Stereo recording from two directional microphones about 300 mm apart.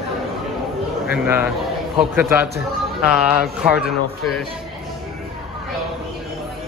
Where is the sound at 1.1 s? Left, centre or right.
Centre.